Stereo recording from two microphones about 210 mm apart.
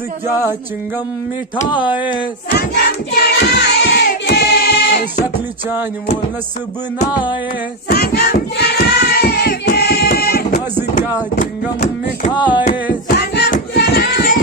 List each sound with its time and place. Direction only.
1.7 s speech: 20° left (ahead or behind)
2.5 s child singing: 50° left (ahead or behind)
7.9 s hands: 50° left (ahead or behind)
12.4 s speech: 20° left (ahead or behind)
13.1 s hands: 50° left (ahead or behind)